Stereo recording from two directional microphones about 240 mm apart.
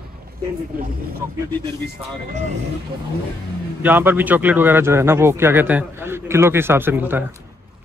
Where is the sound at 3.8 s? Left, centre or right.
Centre.